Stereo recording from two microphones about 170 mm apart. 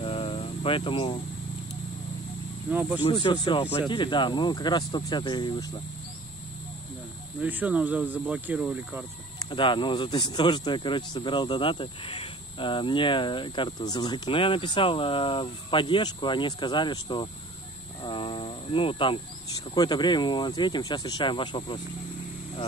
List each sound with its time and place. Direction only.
0.0 s cricket: 30° left (ahead or behind)
2.7 s speech: 10° right (ahead or behind)
3.0 s speech: 30° left (ahead or behind)
7.4 s speech: 10° right (ahead or behind)
9.4 s speech: 30° left (ahead or behind)